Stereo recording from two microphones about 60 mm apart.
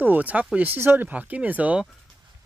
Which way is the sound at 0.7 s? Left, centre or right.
Right.